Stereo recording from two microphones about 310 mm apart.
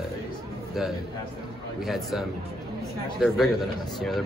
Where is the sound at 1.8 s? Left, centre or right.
Centre.